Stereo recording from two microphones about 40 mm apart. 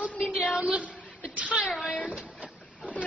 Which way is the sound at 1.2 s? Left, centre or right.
Right.